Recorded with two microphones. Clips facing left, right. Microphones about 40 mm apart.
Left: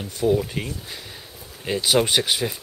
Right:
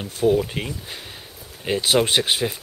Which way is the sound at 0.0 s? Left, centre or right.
Right.